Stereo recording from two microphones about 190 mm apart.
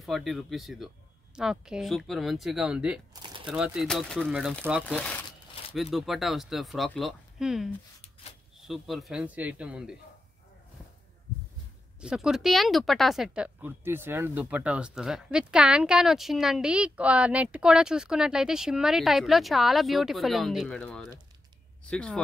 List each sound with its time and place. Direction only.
0.0 s speech: centre (ahead or behind)
3.1 s a sound: 25° right (ahead or behind)
3.4 s speech: 5° right (ahead or behind)
4.8 s speech: 5° left (ahead or behind)
12.0 s speech: 5° right (ahead or behind)